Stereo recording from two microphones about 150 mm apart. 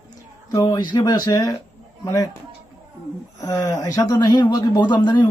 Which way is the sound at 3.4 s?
20° left (ahead or behind).